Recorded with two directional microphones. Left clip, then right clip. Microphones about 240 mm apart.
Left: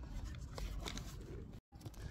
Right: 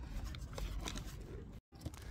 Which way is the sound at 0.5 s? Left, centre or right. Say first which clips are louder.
Right 1 dB; centre.